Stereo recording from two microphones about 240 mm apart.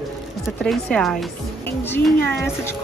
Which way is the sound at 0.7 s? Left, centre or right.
Centre.